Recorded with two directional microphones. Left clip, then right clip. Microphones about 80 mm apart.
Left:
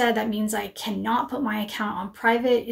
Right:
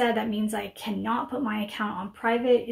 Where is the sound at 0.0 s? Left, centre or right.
Left.